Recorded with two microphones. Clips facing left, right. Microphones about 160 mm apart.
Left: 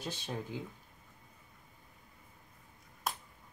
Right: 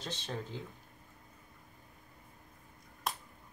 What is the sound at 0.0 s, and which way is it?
Speech, 10° left (ahead or behind).